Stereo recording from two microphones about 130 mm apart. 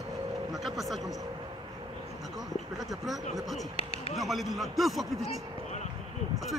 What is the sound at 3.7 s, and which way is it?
Speech, 50° left (ahead or behind).